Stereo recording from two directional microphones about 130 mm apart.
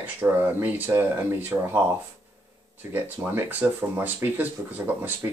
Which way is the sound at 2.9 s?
15° right (ahead or behind).